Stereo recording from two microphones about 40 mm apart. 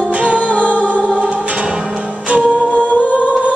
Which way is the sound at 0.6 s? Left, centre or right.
Left.